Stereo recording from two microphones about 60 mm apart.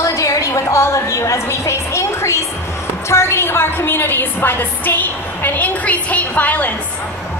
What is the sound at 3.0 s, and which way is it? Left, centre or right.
A woman's voice, left.